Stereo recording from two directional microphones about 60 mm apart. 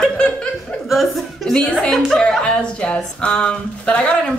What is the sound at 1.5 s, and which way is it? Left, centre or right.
Speech, centre.